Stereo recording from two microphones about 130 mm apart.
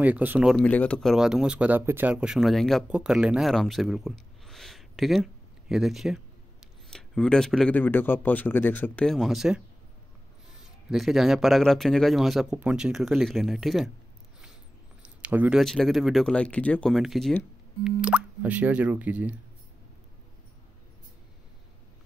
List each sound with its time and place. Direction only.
0.0 s speech: 15° right (ahead or behind)
0.5 s speech: 10° left (ahead or behind)
1.1 s speech: 5° right (ahead or behind); by 9.1 s 10° left (ahead or behind)
9.1 s speech: centre (ahead or behind)
10.6 s speech: 5° right (ahead or behind)
15.0 s a sound: 10° right (ahead or behind)
15.6 s speech: centre (ahead or behind)
16.9 s speech: centre (ahead or behind)